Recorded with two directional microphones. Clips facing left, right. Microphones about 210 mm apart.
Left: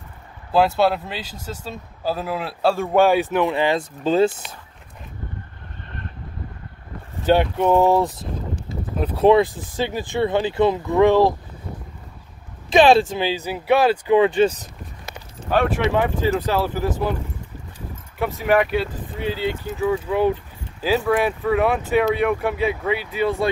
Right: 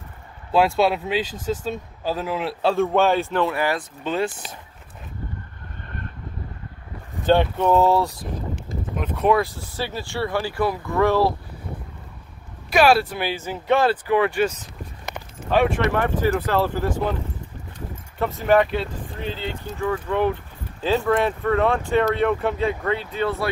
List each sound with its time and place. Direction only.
0.5 s speech: centre (ahead or behind); by 4.3 s 30° left (ahead or behind)
7.3 s speech: 10° left (ahead or behind)
8.9 s speech: 30° left (ahead or behind)
9.4 s speech: 15° left (ahead or behind)
12.7 s speech: 20° left (ahead or behind)
15.5 s speech: centre (ahead or behind)
15.9 s speech: 15° left (ahead or behind)
18.2 s speech: 5° left (ahead or behind)